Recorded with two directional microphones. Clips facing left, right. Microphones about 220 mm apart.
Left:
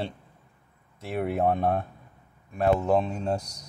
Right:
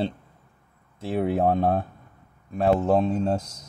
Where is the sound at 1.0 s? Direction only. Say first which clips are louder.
Right 3 dB; 30° right (ahead or behind).